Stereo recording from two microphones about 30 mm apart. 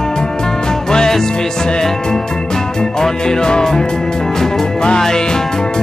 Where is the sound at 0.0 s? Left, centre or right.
Left.